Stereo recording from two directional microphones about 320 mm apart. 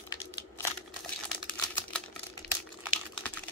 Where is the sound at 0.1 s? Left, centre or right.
Centre.